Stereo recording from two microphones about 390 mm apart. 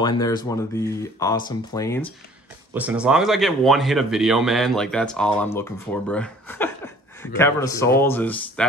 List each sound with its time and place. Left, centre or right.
0.0 s speech: centre
2.7 s speech: centre